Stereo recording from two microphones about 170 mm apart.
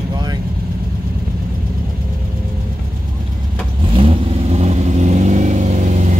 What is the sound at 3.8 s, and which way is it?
Vehicle, 30° right (ahead or behind).